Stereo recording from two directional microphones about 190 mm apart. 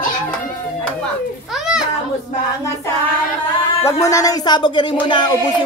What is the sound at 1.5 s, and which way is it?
Children playing, 5° right (ahead or behind).